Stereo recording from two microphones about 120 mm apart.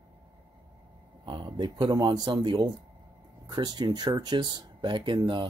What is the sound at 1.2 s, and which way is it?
Speech, 40° right (ahead or behind).